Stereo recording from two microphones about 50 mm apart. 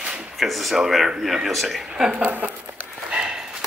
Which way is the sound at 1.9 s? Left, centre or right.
Centre.